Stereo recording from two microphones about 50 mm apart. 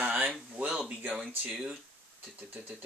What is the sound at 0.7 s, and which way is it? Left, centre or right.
Speech, centre.